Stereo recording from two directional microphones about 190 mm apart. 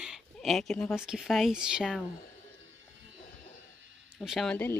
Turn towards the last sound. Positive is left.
turn(degrees=0)  # may be behind; listen again after turning